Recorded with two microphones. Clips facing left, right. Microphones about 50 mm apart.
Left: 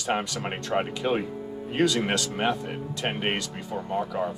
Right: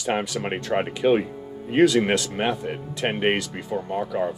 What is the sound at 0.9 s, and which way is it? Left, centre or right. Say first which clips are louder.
Speech: right 6 dB; right.